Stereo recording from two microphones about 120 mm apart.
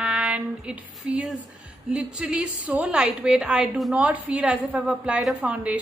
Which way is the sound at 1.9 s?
10° right (ahead or behind).